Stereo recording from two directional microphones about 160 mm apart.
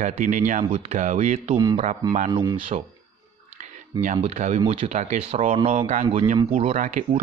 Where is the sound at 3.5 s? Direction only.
50° right (ahead or behind).